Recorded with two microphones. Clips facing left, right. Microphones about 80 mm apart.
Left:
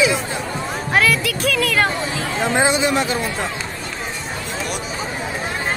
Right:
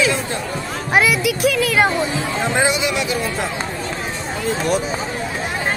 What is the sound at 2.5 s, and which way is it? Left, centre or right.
Speech, left.